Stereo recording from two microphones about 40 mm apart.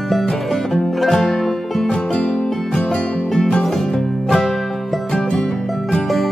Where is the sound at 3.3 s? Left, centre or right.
Left.